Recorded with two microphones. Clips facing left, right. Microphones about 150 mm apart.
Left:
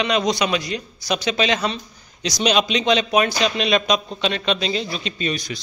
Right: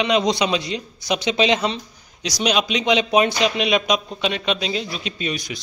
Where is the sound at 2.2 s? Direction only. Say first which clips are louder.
Left 2 dB; 5° right (ahead or behind).